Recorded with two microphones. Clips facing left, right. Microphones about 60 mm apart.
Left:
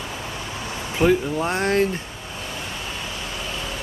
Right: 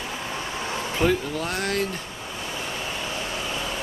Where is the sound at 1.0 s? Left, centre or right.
Centre.